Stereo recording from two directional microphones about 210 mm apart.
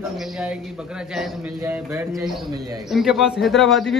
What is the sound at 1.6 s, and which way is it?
A man's voice, 10° right (ahead or behind).